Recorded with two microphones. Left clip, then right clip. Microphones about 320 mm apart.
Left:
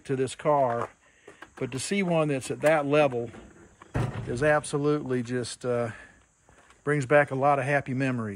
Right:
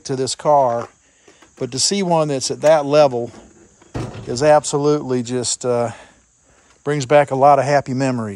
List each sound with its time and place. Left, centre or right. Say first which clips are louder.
0.1 s speech: right 9 dB; centre